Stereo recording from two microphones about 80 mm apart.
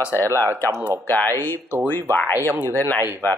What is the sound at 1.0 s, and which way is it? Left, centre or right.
Speech, left.